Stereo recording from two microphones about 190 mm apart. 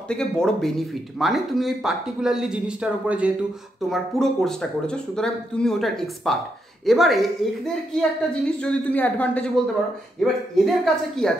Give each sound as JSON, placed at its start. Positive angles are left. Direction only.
{"t": 0.1, "sound": "a man's voice", "side_deg": 5}